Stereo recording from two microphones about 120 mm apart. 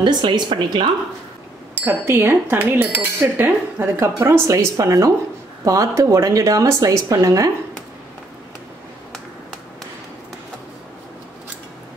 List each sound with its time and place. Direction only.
0.0 s a woman's voice: 40° right (ahead or behind)
1.8 s speech: 20° right (ahead or behind)